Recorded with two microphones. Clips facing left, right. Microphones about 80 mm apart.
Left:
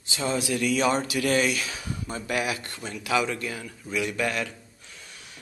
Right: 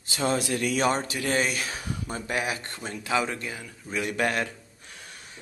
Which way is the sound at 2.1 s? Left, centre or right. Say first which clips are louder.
Left 1 dB; right.